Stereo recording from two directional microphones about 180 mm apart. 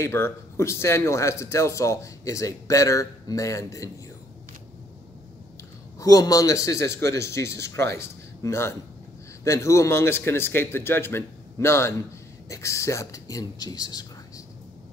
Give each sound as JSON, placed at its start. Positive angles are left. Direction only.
{"t": 0.0, "sound": "a man's voice", "side_deg": 15}
{"t": 5.9, "sound": "a man's voice", "side_deg": 20}